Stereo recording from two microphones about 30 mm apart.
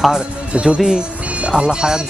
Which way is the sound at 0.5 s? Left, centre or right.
Right.